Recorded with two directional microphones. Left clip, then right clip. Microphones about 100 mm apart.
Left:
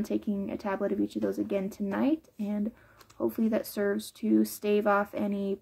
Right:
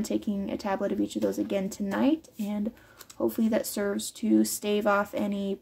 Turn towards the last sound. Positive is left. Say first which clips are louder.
# right 1 dB
turn(degrees=-15)  # may be behind; listen again after turning